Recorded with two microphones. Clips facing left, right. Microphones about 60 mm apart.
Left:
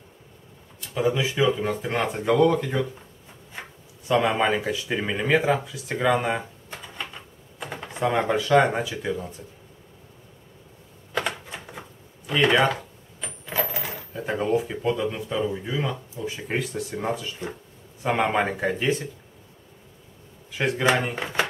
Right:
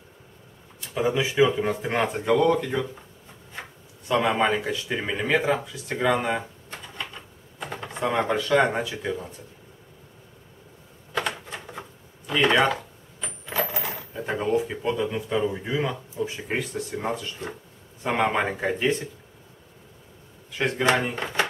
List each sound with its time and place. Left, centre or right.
0.9 s speech: centre
2.0 s speech: centre
4.1 s speech: centre
7.6 s speech: centre
11.2 s typewriter: centre
12.3 s coin: centre
15.3 s speech: centre
20.5 s speech: centre